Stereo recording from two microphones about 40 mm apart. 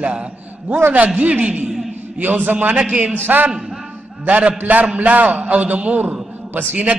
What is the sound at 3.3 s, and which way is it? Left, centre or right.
A man's voice, right.